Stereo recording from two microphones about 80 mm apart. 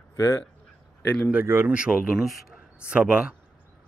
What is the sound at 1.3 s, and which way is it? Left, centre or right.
Speech, right.